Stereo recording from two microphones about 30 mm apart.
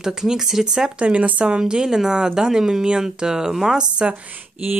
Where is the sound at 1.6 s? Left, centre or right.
Right.